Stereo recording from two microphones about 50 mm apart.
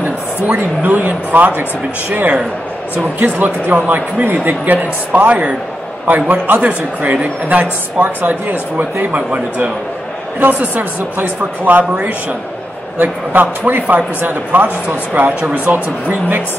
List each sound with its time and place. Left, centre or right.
0.5 s a man's voice: right
3.2 s a man's voice: right